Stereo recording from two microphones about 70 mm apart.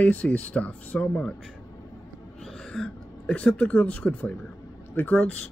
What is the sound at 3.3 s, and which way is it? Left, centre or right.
Speech, centre.